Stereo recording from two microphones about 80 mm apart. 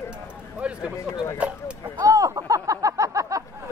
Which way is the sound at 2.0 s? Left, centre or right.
Right.